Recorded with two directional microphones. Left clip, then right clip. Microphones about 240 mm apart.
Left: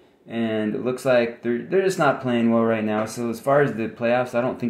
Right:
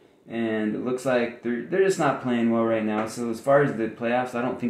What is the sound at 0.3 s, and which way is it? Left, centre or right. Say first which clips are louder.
Speech: left 2 dB; left.